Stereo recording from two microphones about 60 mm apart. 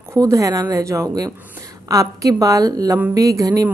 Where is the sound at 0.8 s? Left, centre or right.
Right.